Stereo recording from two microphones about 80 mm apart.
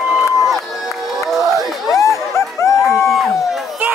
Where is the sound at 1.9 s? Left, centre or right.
Left.